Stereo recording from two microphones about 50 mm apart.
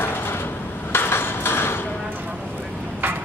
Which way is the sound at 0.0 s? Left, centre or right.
Left.